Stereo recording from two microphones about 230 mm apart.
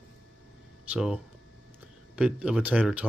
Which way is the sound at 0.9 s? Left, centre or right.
Centre.